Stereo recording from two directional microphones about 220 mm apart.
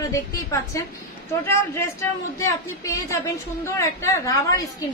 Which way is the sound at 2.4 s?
15° left (ahead or behind).